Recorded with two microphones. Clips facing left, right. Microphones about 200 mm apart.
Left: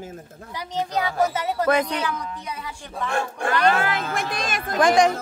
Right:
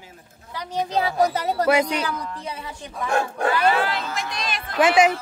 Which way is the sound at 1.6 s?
10° right (ahead or behind).